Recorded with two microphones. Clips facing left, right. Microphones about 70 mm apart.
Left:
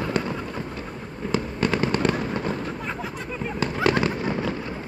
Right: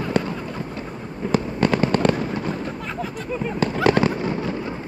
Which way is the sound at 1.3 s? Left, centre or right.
Right.